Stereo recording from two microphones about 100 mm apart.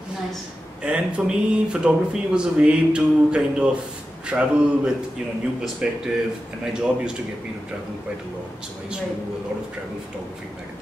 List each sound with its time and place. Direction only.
0.8 s speech: 10° right (ahead or behind)